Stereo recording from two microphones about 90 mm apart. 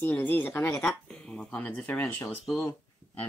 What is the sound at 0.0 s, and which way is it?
Speech, 20° left (ahead or behind).